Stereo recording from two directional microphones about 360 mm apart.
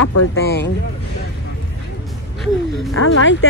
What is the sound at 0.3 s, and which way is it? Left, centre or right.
Speech, left.